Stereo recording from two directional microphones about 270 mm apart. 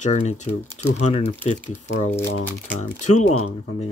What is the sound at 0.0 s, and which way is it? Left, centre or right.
Speech, left.